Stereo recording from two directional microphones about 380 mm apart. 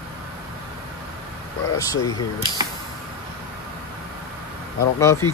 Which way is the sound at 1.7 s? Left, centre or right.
Centre.